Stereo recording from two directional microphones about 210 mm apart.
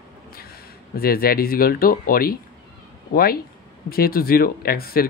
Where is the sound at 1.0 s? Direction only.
45° left (ahead or behind).